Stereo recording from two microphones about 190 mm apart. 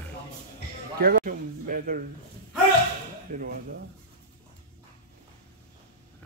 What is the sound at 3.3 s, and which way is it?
Speech, 50° right (ahead or behind).